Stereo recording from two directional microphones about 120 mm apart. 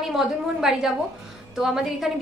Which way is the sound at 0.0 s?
5° right (ahead or behind).